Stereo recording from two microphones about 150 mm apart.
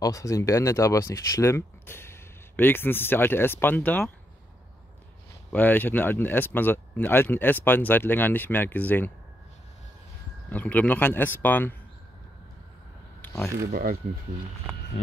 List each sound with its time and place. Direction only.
0.0 s speech: 20° left (ahead or behind)
5.5 s speech: 10° left (ahead or behind)
10.5 s speech: 10° left (ahead or behind)
13.2 s a sound: 15° left (ahead or behind)
13.7 s speech: 90° right